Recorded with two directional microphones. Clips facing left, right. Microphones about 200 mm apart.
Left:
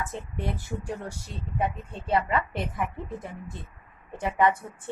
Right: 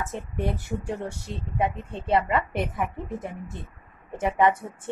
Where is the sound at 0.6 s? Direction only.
25° right (ahead or behind).